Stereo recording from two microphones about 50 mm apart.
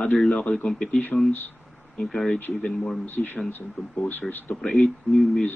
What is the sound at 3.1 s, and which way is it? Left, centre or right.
A man's voice, left.